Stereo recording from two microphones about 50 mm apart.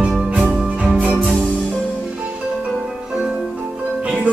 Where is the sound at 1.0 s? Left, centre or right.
Right.